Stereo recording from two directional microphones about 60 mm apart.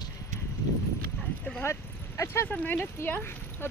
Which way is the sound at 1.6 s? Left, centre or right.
Left.